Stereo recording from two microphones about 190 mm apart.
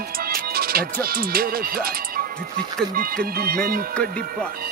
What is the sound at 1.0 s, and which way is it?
Speech, 50° right (ahead or behind).